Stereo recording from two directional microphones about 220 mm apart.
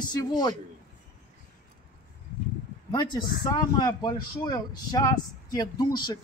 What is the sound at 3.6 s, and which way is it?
A man's voice, 20° left (ahead or behind).